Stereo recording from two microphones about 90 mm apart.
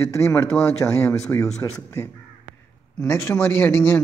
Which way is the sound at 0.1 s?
35° left (ahead or behind).